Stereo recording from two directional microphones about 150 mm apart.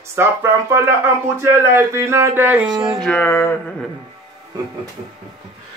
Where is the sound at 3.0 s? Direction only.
10° left (ahead or behind).